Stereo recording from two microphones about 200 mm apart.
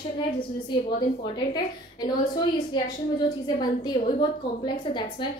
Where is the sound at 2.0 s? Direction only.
20° left (ahead or behind).